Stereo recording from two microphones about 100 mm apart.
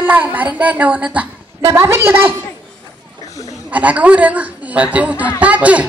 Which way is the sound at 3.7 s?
15° right (ahead or behind).